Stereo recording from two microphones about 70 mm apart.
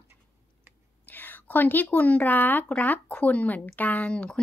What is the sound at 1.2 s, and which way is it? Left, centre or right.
Speech, left.